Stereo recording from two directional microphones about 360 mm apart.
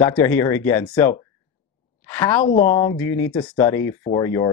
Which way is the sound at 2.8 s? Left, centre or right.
Centre.